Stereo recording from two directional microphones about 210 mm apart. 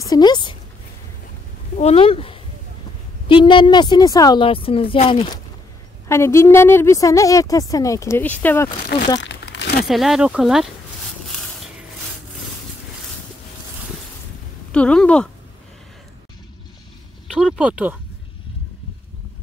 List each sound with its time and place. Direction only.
0.1 s speech: 20° left (ahead or behind)
1.8 s a woman's voice: 30° left (ahead or behind)
6.0 s a woman's voice: 15° left (ahead or behind)
9.2 s crumpling: 55° left (ahead or behind)
9.8 s speech: centre (ahead or behind)
14.7 s a sound: 5° left (ahead or behind)
17.3 s speech: centre (ahead or behind)